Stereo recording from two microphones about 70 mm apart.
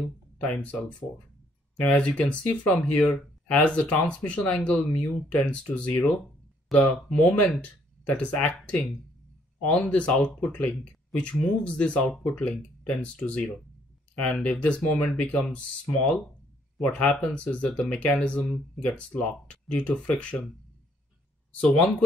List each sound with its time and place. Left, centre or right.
0.4 s speech: left
6.7 s speech: centre
7.1 s speech: left
21.5 s speech: centre